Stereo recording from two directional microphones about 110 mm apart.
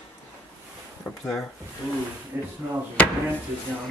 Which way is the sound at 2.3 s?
20° right (ahead or behind).